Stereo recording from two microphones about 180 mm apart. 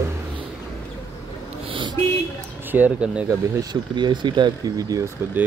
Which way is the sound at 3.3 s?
20° right (ahead or behind).